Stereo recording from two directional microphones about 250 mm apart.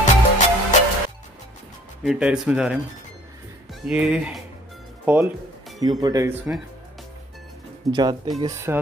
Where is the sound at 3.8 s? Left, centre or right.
Centre.